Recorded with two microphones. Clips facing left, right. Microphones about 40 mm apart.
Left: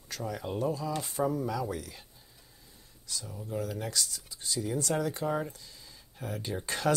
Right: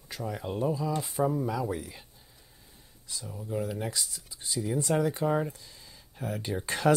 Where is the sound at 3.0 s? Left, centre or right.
Right.